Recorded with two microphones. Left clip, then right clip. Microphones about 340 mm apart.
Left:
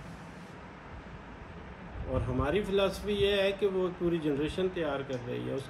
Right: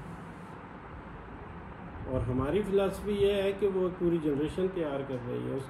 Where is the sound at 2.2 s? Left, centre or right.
Centre.